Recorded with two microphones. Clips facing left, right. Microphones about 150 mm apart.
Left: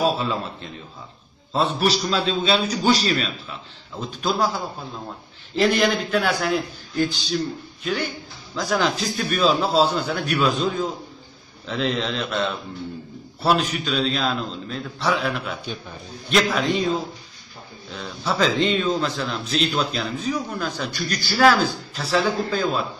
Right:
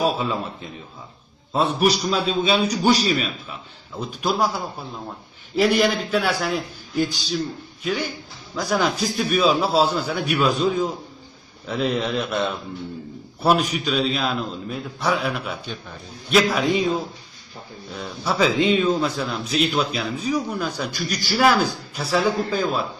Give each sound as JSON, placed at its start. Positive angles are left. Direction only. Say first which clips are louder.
{"t": 0.0, "sound": "a man's voice", "louder": "even", "side_deg": -5}
{"t": 5.5, "sound": "a man's voice", "louder": "right 1 dB", "side_deg": -5}
{"t": 17.9, "sound": "a man's voice", "louder": "right 1 dB", "side_deg": -5}